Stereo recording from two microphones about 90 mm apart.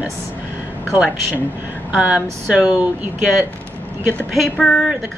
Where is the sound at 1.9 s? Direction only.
15° right (ahead or behind).